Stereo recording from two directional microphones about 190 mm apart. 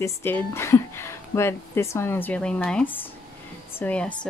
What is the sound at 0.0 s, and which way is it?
Speech, 10° left (ahead or behind).